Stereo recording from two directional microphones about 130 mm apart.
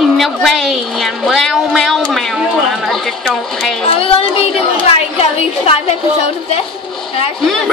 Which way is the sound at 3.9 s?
45° left (ahead or behind).